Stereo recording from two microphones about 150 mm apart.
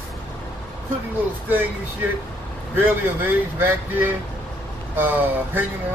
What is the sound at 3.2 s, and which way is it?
Speech, 15° right (ahead or behind).